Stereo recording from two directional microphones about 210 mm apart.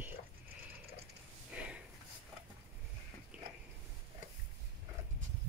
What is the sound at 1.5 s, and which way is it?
Sniff, 5° right (ahead or behind).